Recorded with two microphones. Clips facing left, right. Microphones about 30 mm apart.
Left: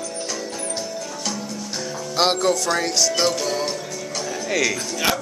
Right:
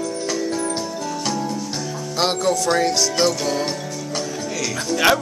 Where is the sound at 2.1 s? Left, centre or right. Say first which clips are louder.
Left 1 dB; centre.